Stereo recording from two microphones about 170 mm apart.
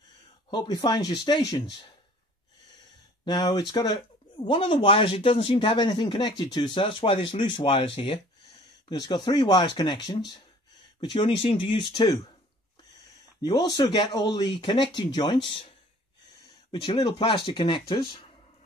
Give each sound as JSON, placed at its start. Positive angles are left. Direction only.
{"t": 0.5, "sound": "speech", "side_deg": 25}
{"t": 3.3, "sound": "speech", "side_deg": 25}
{"t": 11.0, "sound": "speech", "side_deg": 25}
{"t": 13.4, "sound": "speech", "side_deg": 25}
{"t": 16.7, "sound": "speech", "side_deg": 30}